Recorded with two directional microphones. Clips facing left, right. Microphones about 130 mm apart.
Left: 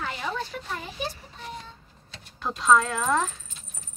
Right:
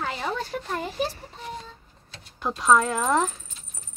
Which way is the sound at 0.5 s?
45° right (ahead or behind).